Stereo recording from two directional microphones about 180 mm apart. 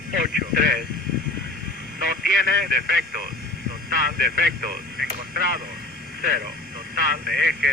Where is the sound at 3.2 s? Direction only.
65° right (ahead or behind).